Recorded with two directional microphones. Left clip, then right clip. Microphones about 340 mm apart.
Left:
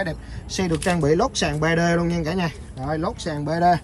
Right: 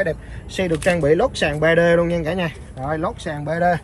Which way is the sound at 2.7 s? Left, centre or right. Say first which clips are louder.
Right 3 dB; centre.